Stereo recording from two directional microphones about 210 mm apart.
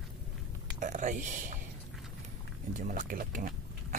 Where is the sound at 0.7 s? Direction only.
35° right (ahead or behind).